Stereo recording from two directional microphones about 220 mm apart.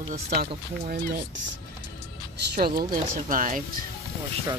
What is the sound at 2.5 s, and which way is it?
Speech, 45° right (ahead or behind).